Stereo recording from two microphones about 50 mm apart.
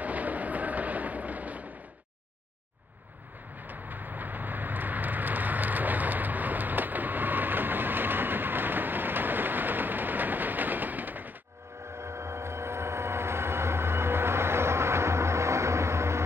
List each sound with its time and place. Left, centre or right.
0.0 s a sound: right
3.6 s vehicle: right
12.0 s vehicle: right